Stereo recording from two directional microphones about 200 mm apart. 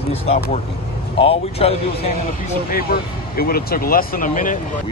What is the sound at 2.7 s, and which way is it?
Speech, 50° left (ahead or behind).